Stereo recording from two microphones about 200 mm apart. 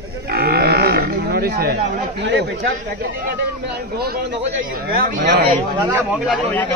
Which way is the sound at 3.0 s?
50° right (ahead or behind).